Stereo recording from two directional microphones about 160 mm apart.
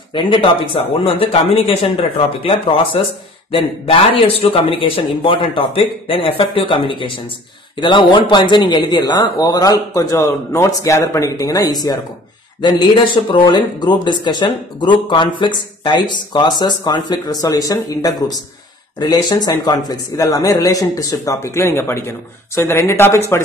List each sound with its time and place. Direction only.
0.1 s a man's voice: 30° left (ahead or behind); by 23.4 s 15° left (ahead or behind)